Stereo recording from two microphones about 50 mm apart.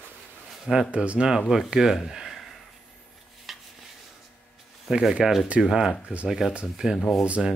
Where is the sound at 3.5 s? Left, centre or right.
Centre.